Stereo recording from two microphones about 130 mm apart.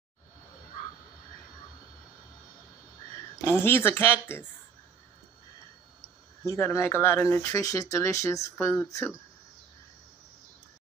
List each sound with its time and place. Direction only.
3.3 s speech: 20° left (ahead or behind)
5.9 s speech: 20° left (ahead or behind)